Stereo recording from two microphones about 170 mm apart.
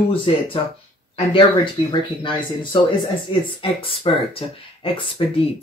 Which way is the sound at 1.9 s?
30° left (ahead or behind).